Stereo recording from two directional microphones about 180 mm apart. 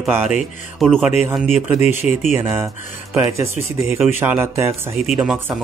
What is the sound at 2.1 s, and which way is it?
Speech, 35° left (ahead or behind).